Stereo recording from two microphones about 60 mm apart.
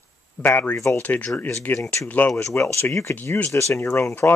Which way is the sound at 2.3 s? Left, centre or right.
Left.